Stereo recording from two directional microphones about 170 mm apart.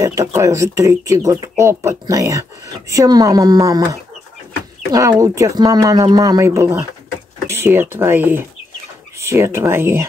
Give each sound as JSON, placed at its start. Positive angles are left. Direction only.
{"t": 0.0, "sound": "speech", "side_deg": -20}
{"t": 4.9, "sound": "speech", "side_deg": -20}